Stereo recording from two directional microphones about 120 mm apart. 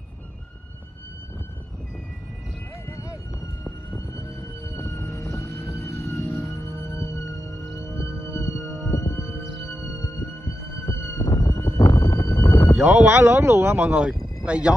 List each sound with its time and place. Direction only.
2.9 s vehicle: 20° left (ahead or behind)
8.4 s siren: 25° left (ahead or behind)
10.9 s emergency vehicle: 25° left (ahead or behind)
12.7 s speech: 5° right (ahead or behind)